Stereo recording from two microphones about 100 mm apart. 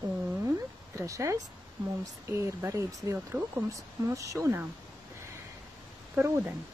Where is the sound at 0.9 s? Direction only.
30° right (ahead or behind).